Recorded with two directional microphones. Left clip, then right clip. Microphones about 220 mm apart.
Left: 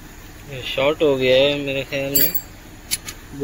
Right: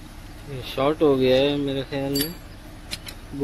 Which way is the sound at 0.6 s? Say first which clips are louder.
Left 3 dB; 10° right (ahead or behind).